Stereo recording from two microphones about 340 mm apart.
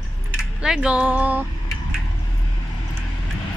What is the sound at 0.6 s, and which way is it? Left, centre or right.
Speech, centre.